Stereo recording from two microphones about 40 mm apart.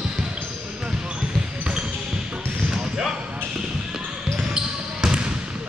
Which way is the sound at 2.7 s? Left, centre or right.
Centre.